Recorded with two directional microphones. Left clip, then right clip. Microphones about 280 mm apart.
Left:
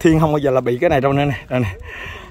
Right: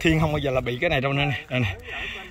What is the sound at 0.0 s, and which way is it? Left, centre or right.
Speech, left.